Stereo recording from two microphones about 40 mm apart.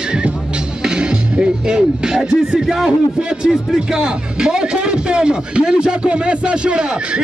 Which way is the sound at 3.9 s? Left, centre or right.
Centre.